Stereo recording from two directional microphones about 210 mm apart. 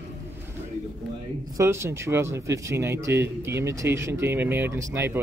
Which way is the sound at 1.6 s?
15° right (ahead or behind).